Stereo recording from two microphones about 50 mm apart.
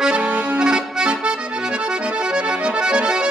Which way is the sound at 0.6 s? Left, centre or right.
Centre.